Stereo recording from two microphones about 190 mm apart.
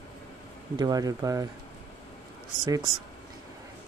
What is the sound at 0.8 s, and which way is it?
Speech, 20° right (ahead or behind).